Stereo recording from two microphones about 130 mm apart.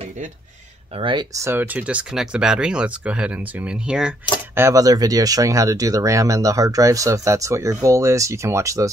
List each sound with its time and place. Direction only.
0.9 s speech: 40° right (ahead or behind)
1.4 s speech: 15° right (ahead or behind)
4.6 s speech: 25° right (ahead or behind)